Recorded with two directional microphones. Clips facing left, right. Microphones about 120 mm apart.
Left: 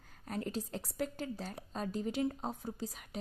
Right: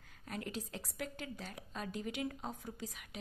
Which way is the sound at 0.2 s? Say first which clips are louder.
Left 4 dB; 35° left (ahead or behind).